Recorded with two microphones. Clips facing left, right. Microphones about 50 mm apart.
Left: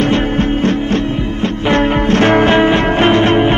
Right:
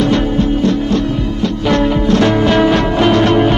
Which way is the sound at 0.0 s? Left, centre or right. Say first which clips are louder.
Even; left.